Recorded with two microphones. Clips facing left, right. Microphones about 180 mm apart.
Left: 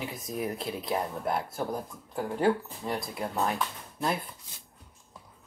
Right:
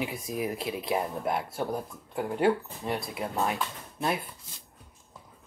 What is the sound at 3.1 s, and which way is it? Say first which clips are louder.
Speech: left 1 dB; 10° right (ahead or behind).